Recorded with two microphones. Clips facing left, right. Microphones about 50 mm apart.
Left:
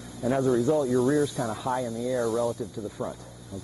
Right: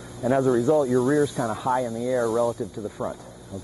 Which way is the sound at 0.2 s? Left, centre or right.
Centre.